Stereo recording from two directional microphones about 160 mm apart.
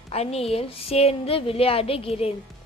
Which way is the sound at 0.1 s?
40° left (ahead or behind).